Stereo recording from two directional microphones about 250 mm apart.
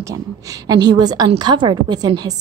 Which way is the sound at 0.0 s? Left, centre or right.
Centre.